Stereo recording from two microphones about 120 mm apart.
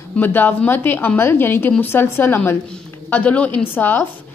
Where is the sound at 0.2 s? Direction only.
15° left (ahead or behind).